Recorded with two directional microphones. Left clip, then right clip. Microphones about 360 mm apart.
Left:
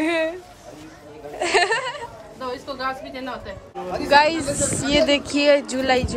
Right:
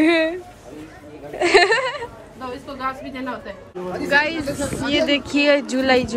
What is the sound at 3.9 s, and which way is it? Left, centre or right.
A woman's voice, centre.